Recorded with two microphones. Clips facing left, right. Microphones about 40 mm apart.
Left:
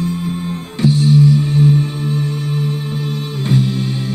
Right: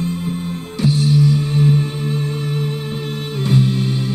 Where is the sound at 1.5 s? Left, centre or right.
Right.